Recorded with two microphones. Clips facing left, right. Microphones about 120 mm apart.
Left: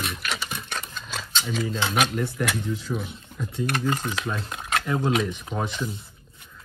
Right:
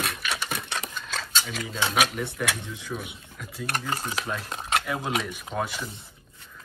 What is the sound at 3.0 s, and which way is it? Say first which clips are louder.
Speech: left 6 dB; 5° right (ahead or behind).